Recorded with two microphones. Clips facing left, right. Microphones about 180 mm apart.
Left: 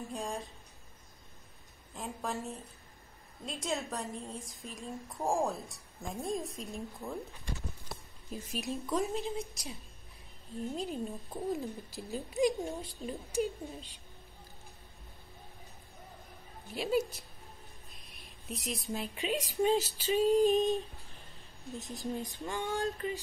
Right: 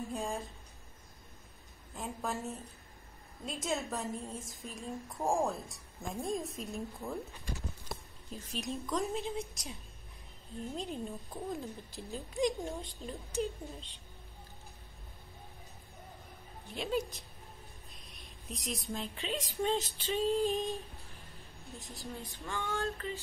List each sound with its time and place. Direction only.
0.1 s a woman's voice: centre (ahead or behind)
2.0 s a woman's voice: centre (ahead or behind)
8.5 s a woman's voice: 5° left (ahead or behind)
16.7 s female singing: 5° left (ahead or behind)
18.5 s a woman's voice: centre (ahead or behind)
18.9 s female singing: 10° left (ahead or behind)
21.7 s female singing: 20° left (ahead or behind)